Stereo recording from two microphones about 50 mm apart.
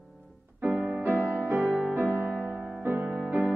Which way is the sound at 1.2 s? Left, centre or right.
Right.